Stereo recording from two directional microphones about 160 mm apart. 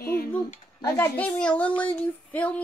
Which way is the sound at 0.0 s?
70° left (ahead or behind).